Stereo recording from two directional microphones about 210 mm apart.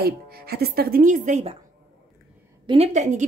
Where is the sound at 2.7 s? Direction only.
30° right (ahead or behind).